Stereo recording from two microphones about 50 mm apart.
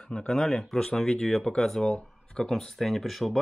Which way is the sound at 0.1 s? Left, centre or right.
Centre.